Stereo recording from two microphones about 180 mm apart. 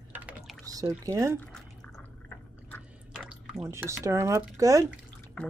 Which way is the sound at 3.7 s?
15° right (ahead or behind).